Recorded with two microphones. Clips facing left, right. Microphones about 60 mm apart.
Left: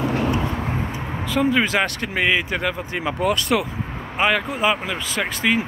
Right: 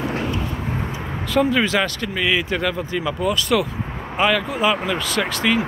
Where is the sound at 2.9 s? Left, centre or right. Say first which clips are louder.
Right 2 dB; left.